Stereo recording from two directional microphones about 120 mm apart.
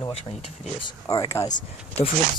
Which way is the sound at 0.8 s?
35° left (ahead or behind).